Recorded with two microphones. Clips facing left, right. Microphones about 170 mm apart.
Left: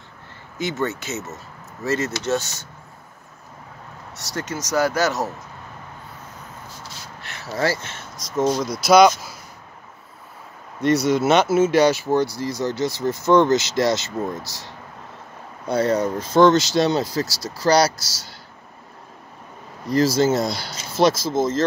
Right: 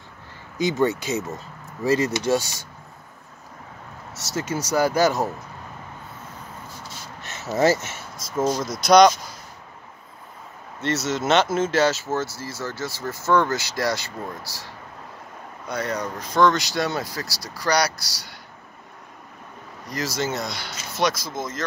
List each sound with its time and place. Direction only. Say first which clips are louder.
0.6 s speech: right 4 dB; 15° right (ahead or behind)
4.1 s speech: right 2 dB; centre (ahead or behind)
7.2 s a sound: right 3 dB; 20° right (ahead or behind)
8.4 s speech: left 2 dB; centre (ahead or behind)
10.8 s speech: left 7 dB; 15° left (ahead or behind)
19.9 s speech: left 9 dB; 30° left (ahead or behind)